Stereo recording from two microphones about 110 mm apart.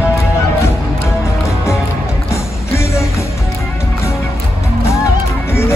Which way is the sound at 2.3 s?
25° left (ahead or behind).